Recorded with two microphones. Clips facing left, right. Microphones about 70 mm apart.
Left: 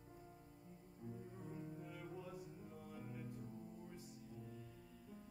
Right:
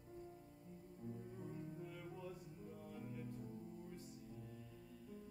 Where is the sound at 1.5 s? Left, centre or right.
Centre.